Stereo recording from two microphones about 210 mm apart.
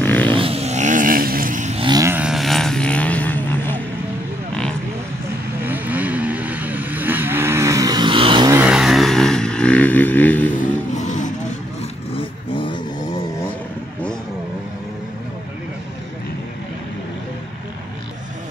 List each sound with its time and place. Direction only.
0.0 s a sound: 10° left (ahead or behind)
0.4 s vehicle: 30° right (ahead or behind)
1.9 s vehicle: 15° right (ahead or behind); by 3.8 s 10° left (ahead or behind)
5.6 s vehicle: 10° right (ahead or behind)
8.5 s vehicle: 5° right (ahead or behind)
11.0 s vehicle: 35° left (ahead or behind)
12.1 s vehicle: 25° left (ahead or behind)